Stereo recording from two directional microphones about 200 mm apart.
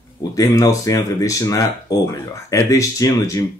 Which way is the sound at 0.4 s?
15° left (ahead or behind).